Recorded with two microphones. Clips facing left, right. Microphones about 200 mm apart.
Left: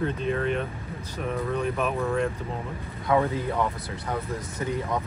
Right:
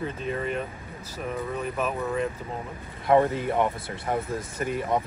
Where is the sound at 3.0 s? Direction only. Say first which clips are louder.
Right 3 dB; 25° right (ahead or behind).